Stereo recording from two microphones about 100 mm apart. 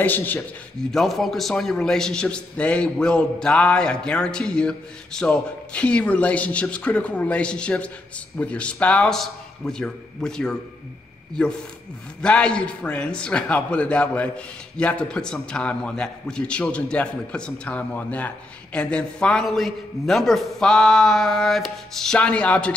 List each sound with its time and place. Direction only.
0.0 s a man's voice: 20° left (ahead or behind)
0.9 s a man's voice: centre (ahead or behind)
12.2 s a man's voice: 10° left (ahead or behind)